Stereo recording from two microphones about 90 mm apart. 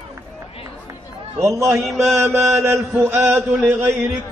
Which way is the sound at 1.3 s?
35° right (ahead or behind).